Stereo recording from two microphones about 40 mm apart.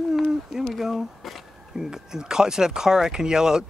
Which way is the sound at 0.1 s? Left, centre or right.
Centre.